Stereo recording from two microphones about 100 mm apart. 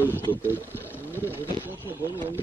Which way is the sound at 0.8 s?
20° right (ahead or behind).